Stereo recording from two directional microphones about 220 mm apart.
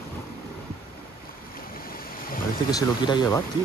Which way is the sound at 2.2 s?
40° left (ahead or behind).